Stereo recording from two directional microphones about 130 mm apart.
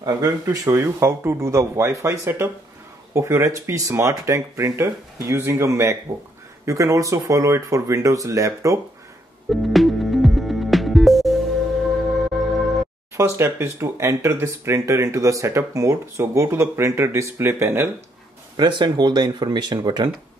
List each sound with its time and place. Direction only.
0.0 s speech: 30° right (ahead or behind)
9.5 s music: centre (ahead or behind)
13.1 s speech: 20° right (ahead or behind)
18.6 s speech: 35° right (ahead or behind)